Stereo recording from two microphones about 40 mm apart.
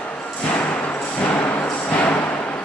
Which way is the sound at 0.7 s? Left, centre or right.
Left.